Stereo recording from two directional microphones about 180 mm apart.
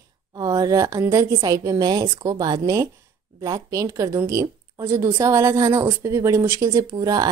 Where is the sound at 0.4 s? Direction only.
20° right (ahead or behind).